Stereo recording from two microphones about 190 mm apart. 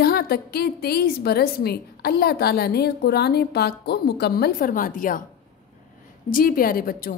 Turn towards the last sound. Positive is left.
turn(degrees=50)  # may be behind; listen again after turning